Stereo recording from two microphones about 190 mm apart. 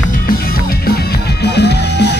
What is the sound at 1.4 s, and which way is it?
Music, 60° left (ahead or behind).